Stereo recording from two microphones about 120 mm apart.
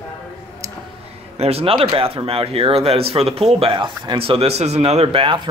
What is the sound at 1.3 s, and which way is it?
Speech, 55° right (ahead or behind).